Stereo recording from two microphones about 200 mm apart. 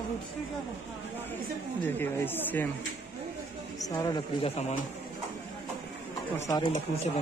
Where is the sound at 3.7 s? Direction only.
20° left (ahead or behind).